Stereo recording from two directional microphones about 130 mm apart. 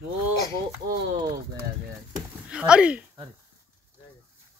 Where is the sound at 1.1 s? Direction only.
35° right (ahead or behind).